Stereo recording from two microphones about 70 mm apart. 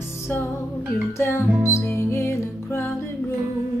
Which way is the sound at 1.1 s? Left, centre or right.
Left.